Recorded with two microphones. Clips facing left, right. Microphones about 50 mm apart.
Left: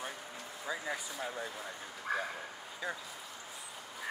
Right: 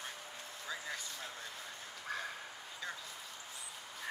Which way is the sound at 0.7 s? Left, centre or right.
Centre.